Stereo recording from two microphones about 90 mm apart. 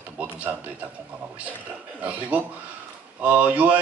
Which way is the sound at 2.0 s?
15° right (ahead or behind).